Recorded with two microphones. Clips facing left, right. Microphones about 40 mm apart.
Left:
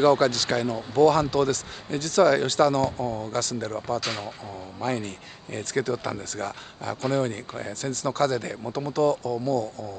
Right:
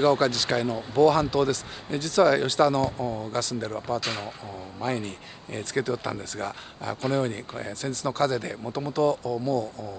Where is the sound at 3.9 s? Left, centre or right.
Right.